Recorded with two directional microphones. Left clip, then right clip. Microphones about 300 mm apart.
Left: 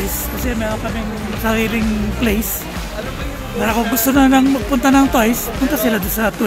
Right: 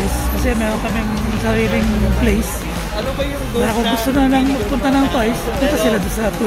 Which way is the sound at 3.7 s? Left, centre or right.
Left.